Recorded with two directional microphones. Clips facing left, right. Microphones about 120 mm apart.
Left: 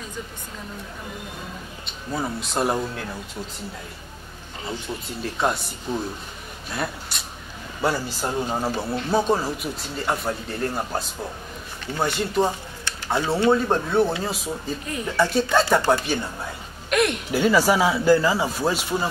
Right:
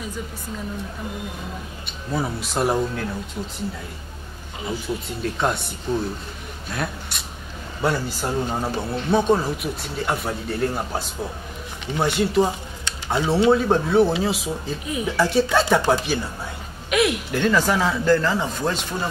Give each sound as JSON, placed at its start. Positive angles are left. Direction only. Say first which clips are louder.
{"t": 2.1, "sound": "speech", "louder": "right 1 dB", "side_deg": 0}
{"t": 4.6, "sound": "speech", "louder": "right 4 dB", "side_deg": 0}
{"t": 6.7, "sound": "a sound", "louder": "even", "side_deg": 0}
{"t": 7.8, "sound": "speech", "louder": "right 1 dB", "side_deg": 0}
{"t": 12.4, "sound": "a sound", "louder": "even", "side_deg": -15}
{"t": 13.5, "sound": "speech", "louder": "right 2 dB", "side_deg": 0}
{"t": 17.4, "sound": "speech", "louder": "left 2 dB", "side_deg": 10}